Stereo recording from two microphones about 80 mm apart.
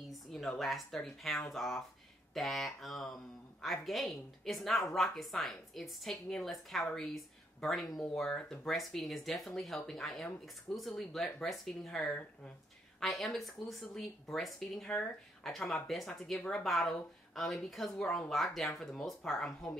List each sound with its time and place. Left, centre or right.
0.1 s a woman's voice: centre